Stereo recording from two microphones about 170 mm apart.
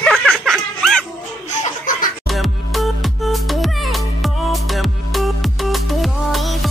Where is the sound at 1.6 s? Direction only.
50° left (ahead or behind).